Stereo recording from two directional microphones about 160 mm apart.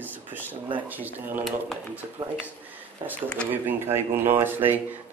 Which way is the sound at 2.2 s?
30° right (ahead or behind).